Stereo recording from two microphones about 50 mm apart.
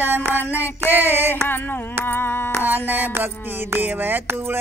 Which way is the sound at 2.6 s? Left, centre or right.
Right.